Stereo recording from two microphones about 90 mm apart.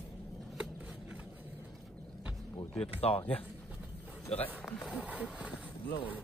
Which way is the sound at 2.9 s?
90° left.